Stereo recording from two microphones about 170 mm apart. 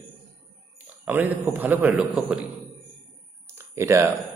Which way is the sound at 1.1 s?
10° right (ahead or behind).